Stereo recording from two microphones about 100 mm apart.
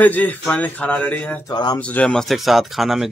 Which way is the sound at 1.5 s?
45° left (ahead or behind).